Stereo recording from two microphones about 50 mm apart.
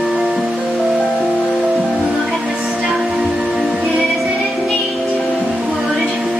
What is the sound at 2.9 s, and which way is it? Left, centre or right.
Music, centre.